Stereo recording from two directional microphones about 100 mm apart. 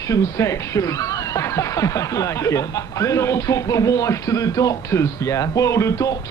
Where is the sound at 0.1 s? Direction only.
30° left (ahead or behind).